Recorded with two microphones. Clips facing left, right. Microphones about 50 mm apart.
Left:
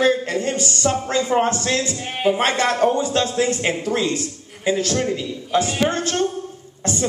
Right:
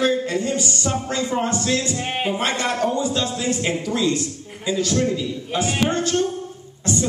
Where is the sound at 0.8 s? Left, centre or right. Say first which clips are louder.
Left 5 dB; left.